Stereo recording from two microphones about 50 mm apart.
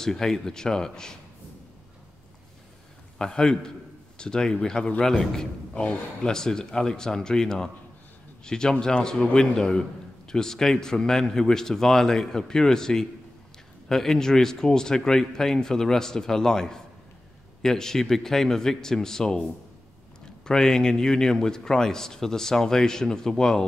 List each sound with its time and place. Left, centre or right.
0.0 s a man's voice: centre
3.2 s a man's voice: centre
20.4 s a man's voice: centre